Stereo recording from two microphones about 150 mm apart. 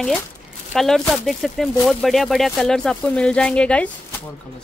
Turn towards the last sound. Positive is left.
turn(degrees=5)  # may be behind; listen again after turning